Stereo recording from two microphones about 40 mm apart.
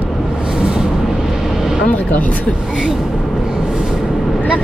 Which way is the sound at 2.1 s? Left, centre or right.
Left.